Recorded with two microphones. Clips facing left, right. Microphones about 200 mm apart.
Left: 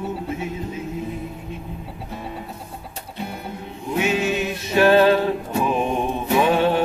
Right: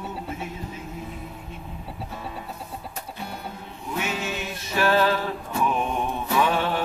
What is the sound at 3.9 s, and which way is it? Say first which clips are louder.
Music: left 8 dB; 20° left (ahead or behind).